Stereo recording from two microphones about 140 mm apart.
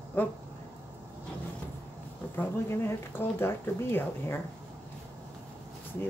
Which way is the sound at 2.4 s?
15° left (ahead or behind).